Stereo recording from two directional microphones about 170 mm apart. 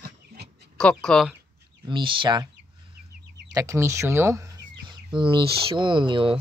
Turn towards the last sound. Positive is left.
turn(degrees=-30)  # may be behind; listen again after turning